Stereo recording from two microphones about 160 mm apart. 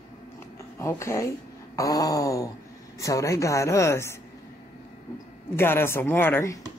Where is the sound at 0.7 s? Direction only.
15° left (ahead or behind).